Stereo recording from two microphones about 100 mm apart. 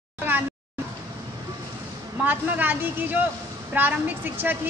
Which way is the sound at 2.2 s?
15° right (ahead or behind).